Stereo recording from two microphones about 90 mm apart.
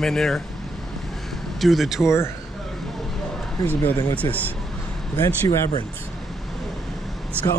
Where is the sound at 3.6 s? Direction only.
20° left (ahead or behind).